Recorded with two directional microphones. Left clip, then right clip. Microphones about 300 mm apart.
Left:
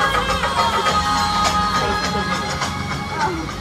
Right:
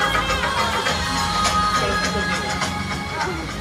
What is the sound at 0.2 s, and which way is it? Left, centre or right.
Music, left.